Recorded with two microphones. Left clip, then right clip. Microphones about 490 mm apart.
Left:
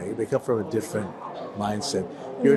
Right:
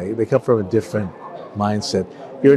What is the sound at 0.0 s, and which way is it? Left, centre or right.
A man's voice, right.